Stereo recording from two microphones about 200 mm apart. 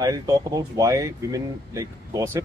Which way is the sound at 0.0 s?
20° right (ahead or behind).